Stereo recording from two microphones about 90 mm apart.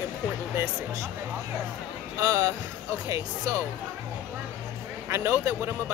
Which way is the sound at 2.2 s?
30° right (ahead or behind).